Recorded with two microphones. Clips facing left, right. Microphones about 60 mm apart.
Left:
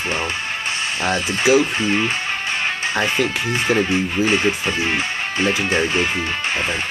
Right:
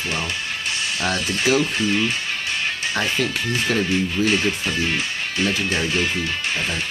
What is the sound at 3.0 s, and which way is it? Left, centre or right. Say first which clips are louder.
Speech: left 3 dB; left.